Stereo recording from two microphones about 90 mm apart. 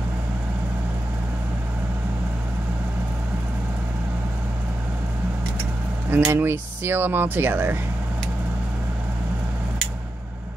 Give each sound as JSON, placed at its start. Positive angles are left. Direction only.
{"t": 6.0, "sound": "speech", "side_deg": -25}